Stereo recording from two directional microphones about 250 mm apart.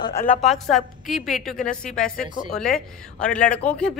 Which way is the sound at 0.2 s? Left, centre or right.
Left.